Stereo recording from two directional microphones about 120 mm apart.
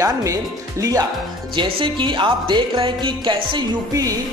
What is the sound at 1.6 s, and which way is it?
Speech, 45° right (ahead or behind).